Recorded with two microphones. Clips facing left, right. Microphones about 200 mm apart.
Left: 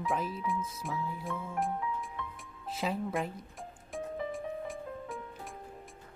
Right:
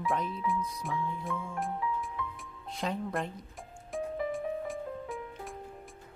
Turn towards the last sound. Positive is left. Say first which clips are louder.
# right 3 dB
turn(degrees=0)  # may be behind; listen again after turning